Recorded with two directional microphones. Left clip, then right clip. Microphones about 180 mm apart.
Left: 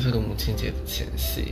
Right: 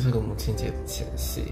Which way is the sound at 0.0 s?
25° right (ahead or behind).